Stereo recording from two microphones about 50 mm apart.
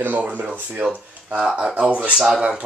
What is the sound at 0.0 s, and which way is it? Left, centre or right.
Speech, right.